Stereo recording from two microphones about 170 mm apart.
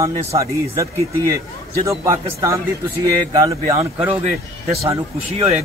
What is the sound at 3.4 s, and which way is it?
Speech, 15° right (ahead or behind).